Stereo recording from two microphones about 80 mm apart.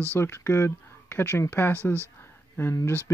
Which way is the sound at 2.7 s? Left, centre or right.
Left.